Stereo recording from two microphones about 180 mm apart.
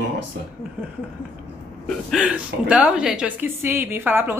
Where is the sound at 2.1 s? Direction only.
5° right (ahead or behind).